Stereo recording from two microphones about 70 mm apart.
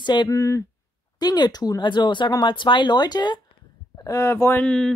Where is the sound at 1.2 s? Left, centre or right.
Left.